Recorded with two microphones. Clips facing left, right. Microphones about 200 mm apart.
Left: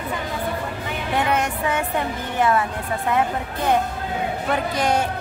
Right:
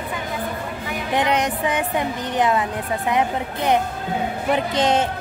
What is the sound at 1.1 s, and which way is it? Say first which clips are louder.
A woman's voice: right 2 dB; 15° right (ahead or behind).